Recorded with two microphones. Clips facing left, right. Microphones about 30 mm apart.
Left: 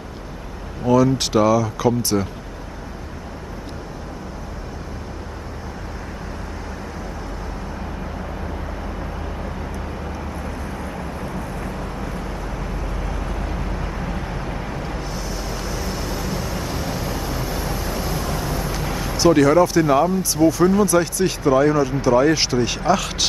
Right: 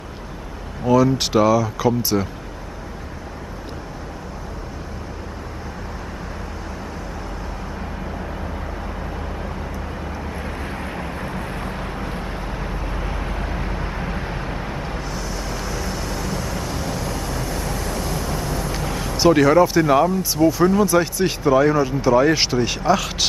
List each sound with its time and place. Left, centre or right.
0.8 s speech: centre
10.4 s vehicle: right; by 15.0 s centre
15.0 s vehicle: centre
19.1 s speech: centre